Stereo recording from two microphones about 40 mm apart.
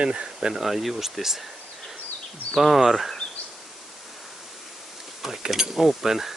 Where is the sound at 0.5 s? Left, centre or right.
Centre.